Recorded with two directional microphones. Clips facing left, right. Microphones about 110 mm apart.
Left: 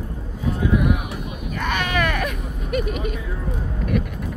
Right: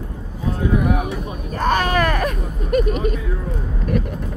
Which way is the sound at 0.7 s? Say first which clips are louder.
Right 2 dB; 35° right (ahead or behind).